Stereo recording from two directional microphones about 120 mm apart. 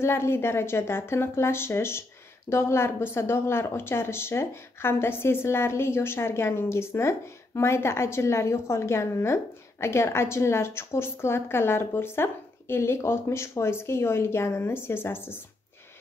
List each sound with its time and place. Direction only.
0.0 s speech: 20° left (ahead or behind)